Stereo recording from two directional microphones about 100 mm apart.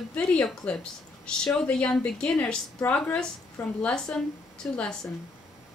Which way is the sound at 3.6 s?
15° left (ahead or behind).